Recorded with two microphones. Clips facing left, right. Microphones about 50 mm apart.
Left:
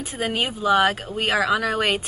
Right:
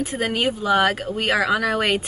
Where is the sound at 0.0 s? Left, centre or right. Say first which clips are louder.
Right 3 dB; centre.